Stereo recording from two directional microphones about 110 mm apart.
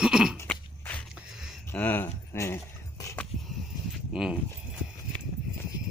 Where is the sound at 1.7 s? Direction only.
15° left (ahead or behind).